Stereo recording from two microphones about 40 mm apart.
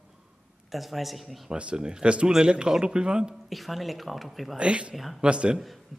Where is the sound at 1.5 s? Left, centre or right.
Right.